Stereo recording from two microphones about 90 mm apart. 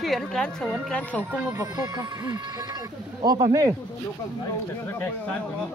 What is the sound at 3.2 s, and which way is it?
Speech, 50° right (ahead or behind).